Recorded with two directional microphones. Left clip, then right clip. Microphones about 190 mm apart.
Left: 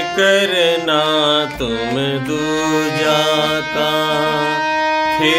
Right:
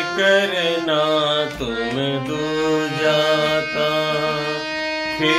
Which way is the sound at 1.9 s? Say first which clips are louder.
Left 4 dB; 50° left (ahead or behind).